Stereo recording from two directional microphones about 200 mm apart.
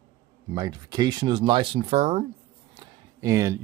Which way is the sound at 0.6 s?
20° right (ahead or behind).